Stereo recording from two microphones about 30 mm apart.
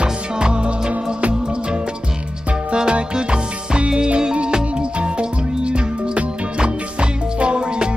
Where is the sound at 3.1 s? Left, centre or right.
Right.